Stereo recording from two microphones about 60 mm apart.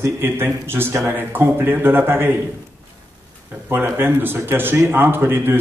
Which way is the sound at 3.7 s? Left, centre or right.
Right.